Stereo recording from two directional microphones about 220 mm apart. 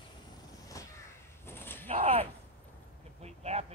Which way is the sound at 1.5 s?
10° left (ahead or behind).